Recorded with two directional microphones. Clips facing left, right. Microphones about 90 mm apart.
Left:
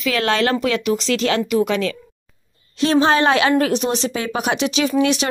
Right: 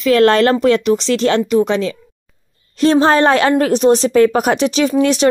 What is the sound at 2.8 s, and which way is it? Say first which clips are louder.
Speech: right 4 dB; 40° right (ahead or behind).